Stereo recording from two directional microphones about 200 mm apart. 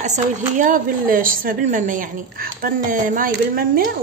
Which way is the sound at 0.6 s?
40° right (ahead or behind).